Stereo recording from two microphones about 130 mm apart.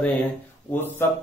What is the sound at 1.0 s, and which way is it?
Speech, 20° left (ahead or behind).